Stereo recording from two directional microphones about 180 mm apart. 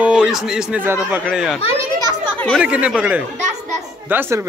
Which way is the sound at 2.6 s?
5° right (ahead or behind).